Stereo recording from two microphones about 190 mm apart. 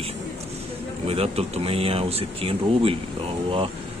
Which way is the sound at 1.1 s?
30° right (ahead or behind).